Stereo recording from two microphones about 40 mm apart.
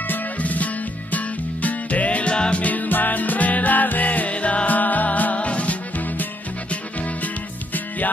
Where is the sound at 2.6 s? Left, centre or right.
Left.